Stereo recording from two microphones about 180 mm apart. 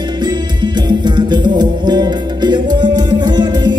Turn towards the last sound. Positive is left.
turn(degrees=-25)  # may be behind; listen again after turning